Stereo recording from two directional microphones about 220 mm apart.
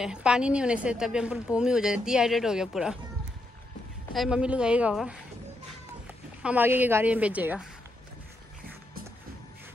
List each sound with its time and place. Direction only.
0.0 s a woman's voice: 5° right (ahead or behind)
4.1 s a woman's voice: centre (ahead or behind)
6.4 s a woman's voice: 10° right (ahead or behind)